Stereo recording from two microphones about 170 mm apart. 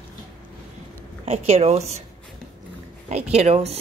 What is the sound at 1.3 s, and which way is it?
Speech, 40° right (ahead or behind).